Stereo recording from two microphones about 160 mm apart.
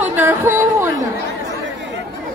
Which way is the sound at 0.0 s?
15° right (ahead or behind).